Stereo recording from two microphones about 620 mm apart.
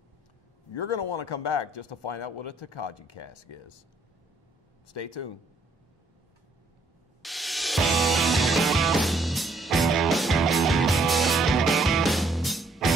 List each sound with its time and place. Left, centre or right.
0.7 s speech: left
4.9 s speech: left
7.2 s music: centre